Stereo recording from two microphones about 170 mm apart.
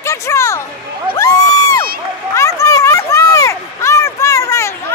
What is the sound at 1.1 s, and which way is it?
Crowd, 20° left (ahead or behind).